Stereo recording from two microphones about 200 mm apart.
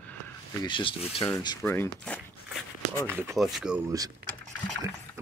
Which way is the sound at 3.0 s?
10° right (ahead or behind).